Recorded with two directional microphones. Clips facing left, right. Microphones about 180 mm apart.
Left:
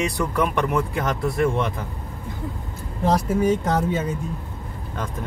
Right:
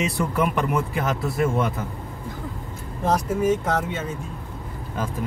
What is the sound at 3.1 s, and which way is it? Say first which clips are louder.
Speech: left 1 dB; 35° left (ahead or behind).